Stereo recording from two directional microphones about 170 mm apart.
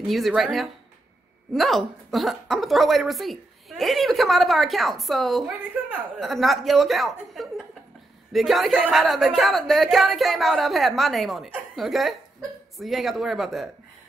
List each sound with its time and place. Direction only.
0.0 s a woman's voice: centre (ahead or behind)
5.8 s a sound: 10° right (ahead or behind)
6.1 s a woman's voice: centre (ahead or behind)